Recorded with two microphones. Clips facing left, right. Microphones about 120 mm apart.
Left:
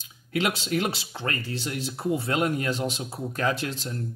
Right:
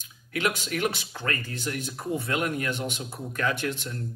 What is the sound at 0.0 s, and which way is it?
Speech, 30° left (ahead or behind).